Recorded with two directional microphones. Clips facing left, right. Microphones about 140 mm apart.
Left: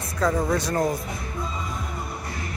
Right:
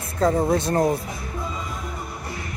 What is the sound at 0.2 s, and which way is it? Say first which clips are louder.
Music: right 3 dB; 30° right (ahead or behind).